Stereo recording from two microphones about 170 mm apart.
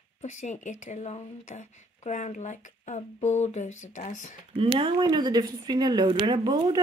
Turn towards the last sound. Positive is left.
turn(degrees=-25)  # may be behind; listen again after turning